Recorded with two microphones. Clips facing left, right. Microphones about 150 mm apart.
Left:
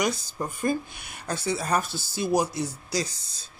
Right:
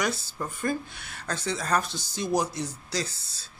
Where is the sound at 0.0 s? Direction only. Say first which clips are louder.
Left 2 dB; 15° left (ahead or behind).